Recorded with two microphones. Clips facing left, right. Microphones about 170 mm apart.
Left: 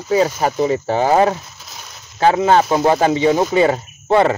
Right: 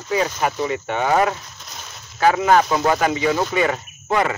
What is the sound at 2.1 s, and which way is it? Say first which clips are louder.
Speech: left 2 dB; 30° left (ahead or behind).